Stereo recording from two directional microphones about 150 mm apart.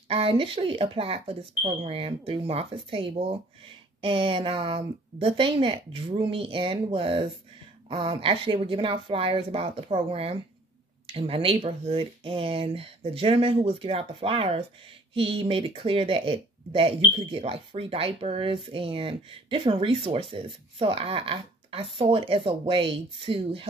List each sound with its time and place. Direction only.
0.1 s speech: 35° right (ahead or behind)